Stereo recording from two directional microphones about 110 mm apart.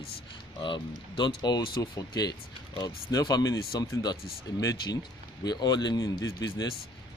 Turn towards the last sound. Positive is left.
turn(degrees=35)  # may be behind; listen again after turning